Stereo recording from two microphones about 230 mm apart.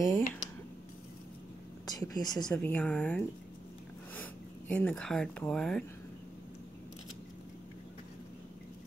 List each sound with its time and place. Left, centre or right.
0.0 s speech: centre
1.9 s speech: centre
2.4 s speech: centre
4.7 s speech: centre